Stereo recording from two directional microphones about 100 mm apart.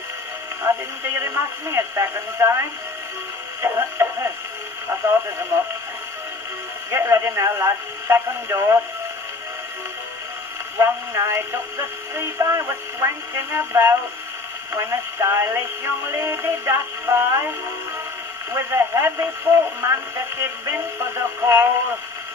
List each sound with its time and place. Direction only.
0.7 s speech: 25° right (ahead or behind)
3.6 s speech: 25° right (ahead or behind)
6.9 s speech: 25° right (ahead or behind)
10.8 s speech: 30° right (ahead or behind)
18.5 s speech: 25° right (ahead or behind)